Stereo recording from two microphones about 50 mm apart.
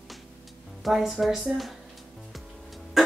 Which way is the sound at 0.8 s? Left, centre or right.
Centre.